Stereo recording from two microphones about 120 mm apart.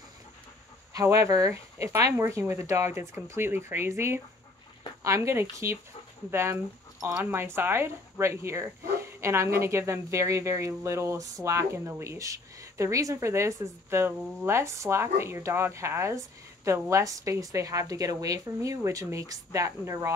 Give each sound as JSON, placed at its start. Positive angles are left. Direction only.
{"t": 0.9, "sound": "speech", "side_deg": -25}